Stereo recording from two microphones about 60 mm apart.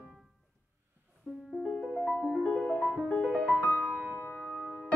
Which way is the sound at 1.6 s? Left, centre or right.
Left.